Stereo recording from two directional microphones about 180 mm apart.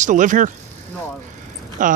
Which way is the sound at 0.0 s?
45° right (ahead or behind).